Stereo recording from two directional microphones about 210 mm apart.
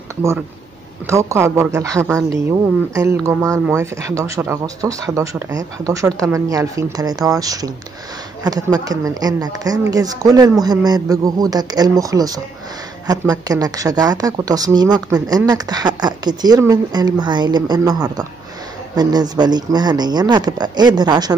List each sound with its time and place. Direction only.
1.0 s a woman's voice: 15° right (ahead or behind)
8.7 s a woman's voice: 20° right (ahead or behind)